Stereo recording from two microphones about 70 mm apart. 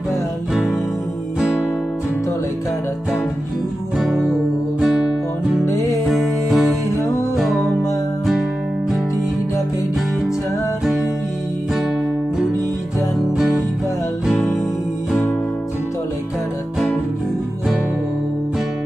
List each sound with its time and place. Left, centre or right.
4.0 s music: centre
14.2 s music: centre